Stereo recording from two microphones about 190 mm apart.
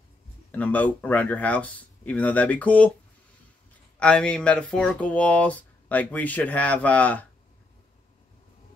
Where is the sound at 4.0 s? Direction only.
5° left (ahead or behind).